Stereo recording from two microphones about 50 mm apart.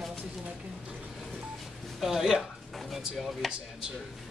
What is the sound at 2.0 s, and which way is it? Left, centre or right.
Speech, centre.